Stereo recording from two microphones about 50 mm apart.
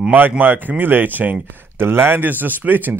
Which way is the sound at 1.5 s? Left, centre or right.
Right.